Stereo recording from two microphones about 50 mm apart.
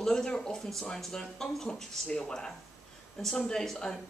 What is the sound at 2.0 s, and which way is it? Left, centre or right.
Speech, centre.